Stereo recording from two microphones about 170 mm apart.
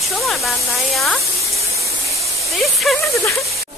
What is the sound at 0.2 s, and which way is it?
Speech, centre (ahead or behind).